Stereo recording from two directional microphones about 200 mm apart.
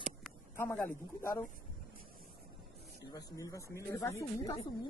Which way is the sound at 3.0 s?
20° left (ahead or behind).